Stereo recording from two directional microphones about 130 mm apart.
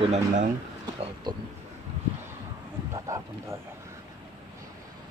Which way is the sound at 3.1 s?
25° right (ahead or behind).